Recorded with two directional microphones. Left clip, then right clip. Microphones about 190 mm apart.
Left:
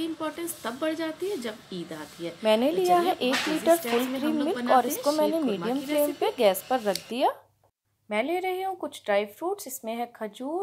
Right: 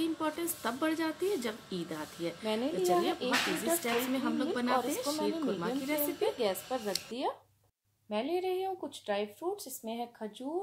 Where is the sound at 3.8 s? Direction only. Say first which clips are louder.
Left 5 dB; centre (ahead or behind).